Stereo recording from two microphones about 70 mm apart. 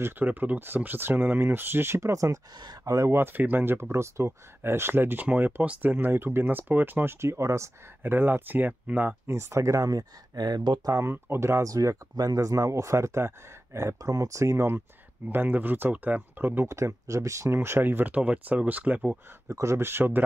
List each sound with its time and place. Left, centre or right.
0.0 s speech: right
3.1 s speech: right
7.2 s speech: right
8.0 s speech: right
9.3 s speech: right
10.9 s speech: right
11.7 s speech: right
15.2 s speech: right
16.6 s speech: right
19.4 s speech: right